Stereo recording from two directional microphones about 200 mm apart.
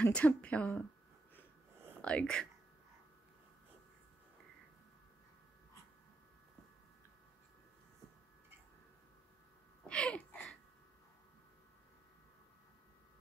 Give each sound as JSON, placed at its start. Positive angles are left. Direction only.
{"t": 0.0, "sound": "speech", "side_deg": 10}
{"t": 2.0, "sound": "speech", "side_deg": 5}
{"t": 9.8, "sound": "a sound", "side_deg": 5}